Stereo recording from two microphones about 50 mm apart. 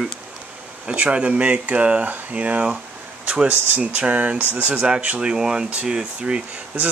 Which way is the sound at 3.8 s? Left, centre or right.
Right.